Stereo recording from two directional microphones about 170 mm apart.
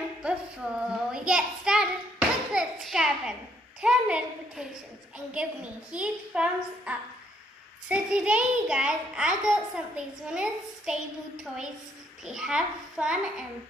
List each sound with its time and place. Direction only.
0.2 s child singing: 5° right (ahead or behind)
3.8 s a child's voice: 5° right (ahead or behind)